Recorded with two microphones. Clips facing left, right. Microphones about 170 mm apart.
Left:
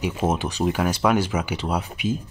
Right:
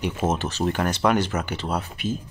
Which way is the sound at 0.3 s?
10° left (ahead or behind).